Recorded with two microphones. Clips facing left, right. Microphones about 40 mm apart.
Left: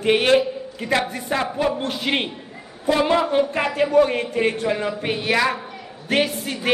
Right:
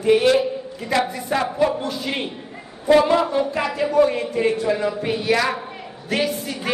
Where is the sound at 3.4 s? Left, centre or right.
Left.